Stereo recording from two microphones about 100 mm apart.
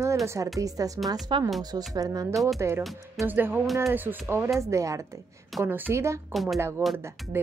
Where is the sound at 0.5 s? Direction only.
35° right (ahead or behind).